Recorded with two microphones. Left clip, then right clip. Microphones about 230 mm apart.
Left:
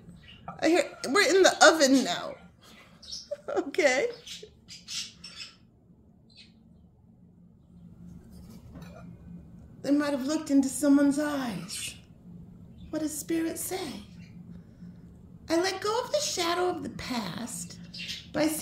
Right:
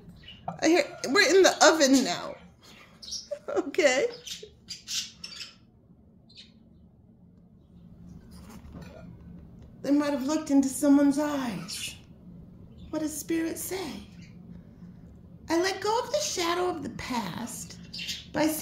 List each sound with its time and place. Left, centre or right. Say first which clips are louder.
0.3 s speech: right 1 dB; centre
9.8 s a woman's voice: right 1 dB; centre
12.9 s a woman's voice: right 1 dB; centre